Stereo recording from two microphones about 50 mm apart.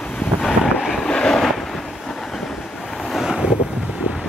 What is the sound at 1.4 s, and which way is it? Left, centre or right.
Vehicle, centre.